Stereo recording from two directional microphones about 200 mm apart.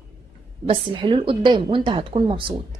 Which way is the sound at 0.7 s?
25° right (ahead or behind).